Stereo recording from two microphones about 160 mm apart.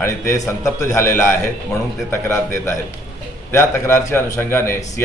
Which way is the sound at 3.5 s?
15° left (ahead or behind).